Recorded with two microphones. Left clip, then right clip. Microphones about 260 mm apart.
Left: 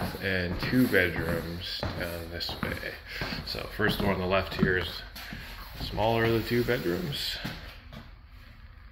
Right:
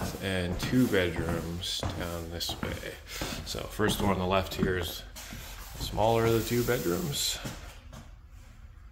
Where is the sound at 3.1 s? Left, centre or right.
Right.